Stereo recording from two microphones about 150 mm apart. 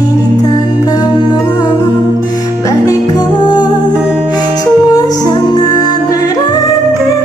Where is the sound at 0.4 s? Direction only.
25° left (ahead or behind).